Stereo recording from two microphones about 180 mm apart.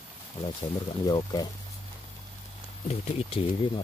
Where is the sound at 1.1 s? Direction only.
25° left (ahead or behind).